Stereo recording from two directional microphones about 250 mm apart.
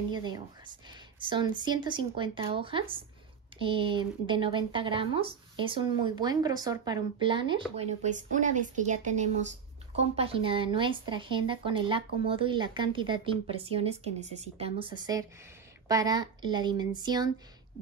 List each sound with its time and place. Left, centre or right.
0.1 s speech: centre